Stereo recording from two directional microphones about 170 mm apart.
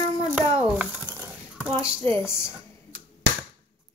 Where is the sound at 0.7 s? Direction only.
10° right (ahead or behind).